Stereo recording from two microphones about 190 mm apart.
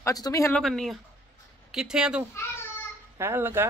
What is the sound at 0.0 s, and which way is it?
Speech, 20° left (ahead or behind).